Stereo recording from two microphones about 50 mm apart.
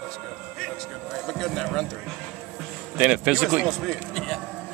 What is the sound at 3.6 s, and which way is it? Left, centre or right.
Speech, centre.